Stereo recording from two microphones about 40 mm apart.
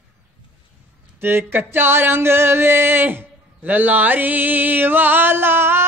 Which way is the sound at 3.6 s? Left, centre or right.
Right.